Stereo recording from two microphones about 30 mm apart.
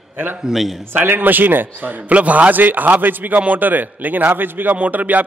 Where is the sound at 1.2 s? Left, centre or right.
Right.